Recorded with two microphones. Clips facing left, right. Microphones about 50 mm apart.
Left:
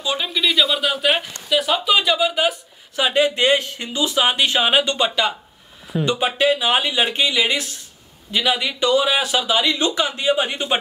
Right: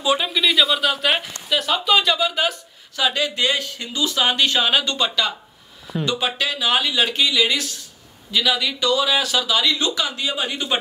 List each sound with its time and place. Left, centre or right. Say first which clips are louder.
0.0 s speech: right 2 dB; centre
3.0 s a man's voice: left 4 dB; left